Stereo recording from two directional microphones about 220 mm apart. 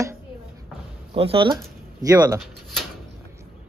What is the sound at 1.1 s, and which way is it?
Speech, 25° right (ahead or behind).